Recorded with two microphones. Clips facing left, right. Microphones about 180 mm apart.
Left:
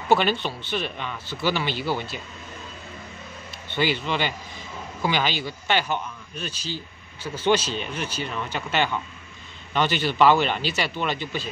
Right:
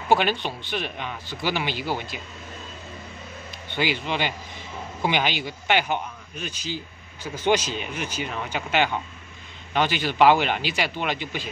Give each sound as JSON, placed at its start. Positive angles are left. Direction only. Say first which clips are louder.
{"t": 0.1, "sound": "speech", "louder": "left 1 dB", "side_deg": -10}
{"t": 3.7, "sound": "speech", "louder": "left 1 dB", "side_deg": -15}